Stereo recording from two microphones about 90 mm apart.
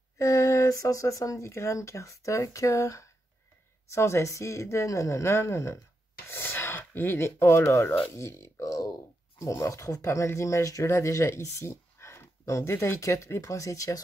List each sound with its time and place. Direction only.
0.2 s speech: 35° left (ahead or behind)